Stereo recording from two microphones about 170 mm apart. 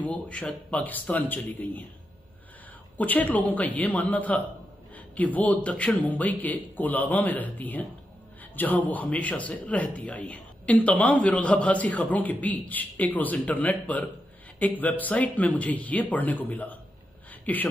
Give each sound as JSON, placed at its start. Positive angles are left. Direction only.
{"t": 0.0, "sound": "a man's voice", "side_deg": 10}
{"t": 3.0, "sound": "a man's voice", "side_deg": 10}
{"t": 17.3, "sound": "a sound", "side_deg": 10}